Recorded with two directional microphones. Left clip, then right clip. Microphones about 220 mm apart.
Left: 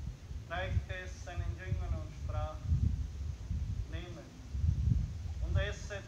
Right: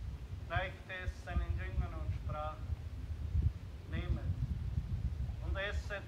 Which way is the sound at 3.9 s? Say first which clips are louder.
Right 2 dB; 15° left (ahead or behind).